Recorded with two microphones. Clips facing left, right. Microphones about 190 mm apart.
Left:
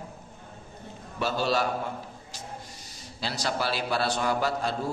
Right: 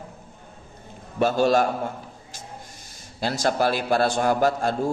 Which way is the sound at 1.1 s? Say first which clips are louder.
Right 7 dB; 50° right (ahead or behind).